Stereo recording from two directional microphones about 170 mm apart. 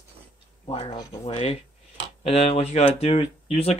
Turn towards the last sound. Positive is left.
turn(degrees=35)  # may be behind; listen again after turning